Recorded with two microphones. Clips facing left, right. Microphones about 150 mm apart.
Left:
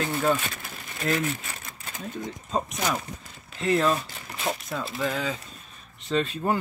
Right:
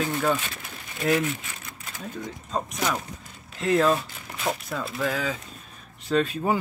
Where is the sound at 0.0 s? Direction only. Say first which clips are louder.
Right 1 dB; 5° left (ahead or behind).